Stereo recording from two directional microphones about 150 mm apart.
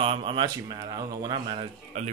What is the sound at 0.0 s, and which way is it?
Speech, 40° right (ahead or behind).